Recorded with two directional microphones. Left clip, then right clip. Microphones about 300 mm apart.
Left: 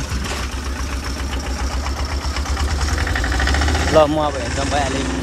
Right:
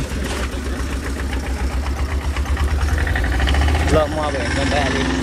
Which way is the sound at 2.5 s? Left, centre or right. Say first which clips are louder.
Left 1 dB; left.